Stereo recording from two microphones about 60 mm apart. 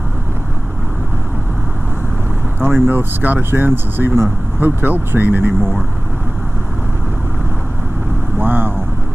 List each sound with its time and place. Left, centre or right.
2.6 s speech: right
8.4 s vehicle: right